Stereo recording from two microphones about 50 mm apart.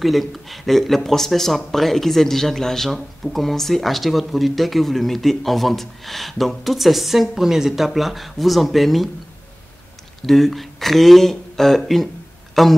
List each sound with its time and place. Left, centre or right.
0.0 s speech: centre
10.2 s speech: centre